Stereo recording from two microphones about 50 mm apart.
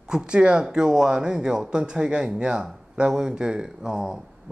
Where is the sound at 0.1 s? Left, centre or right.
Centre.